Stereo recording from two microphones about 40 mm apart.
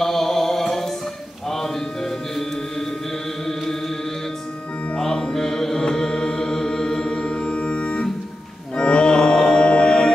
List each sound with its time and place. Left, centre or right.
0.0 s music: centre
4.9 s music: left